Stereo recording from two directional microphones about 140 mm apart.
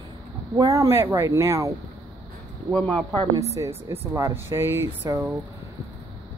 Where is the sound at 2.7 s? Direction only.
10° left (ahead or behind).